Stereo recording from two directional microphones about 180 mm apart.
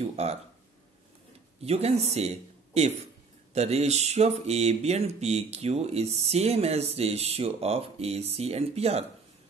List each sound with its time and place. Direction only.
0.0 s speech: 35° right (ahead or behind)
1.6 s a man's voice: 35° right (ahead or behind)